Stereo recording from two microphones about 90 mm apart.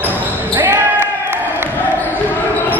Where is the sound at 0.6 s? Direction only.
20° right (ahead or behind).